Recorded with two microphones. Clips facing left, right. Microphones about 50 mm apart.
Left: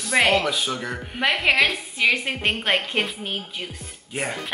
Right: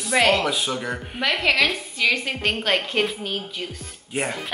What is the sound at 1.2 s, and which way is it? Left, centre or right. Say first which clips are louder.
A woman's voice: left 1 dB; centre.